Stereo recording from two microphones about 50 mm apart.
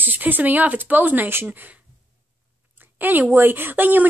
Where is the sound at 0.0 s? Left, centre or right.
Right.